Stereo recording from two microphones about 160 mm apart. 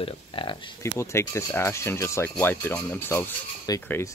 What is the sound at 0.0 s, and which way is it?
Speech, 30° left (ahead or behind).